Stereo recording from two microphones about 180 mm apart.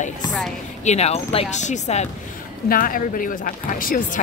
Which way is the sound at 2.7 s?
50° left (ahead or behind).